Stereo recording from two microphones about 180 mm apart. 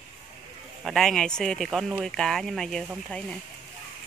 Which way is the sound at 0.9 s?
Centre (ahead or behind).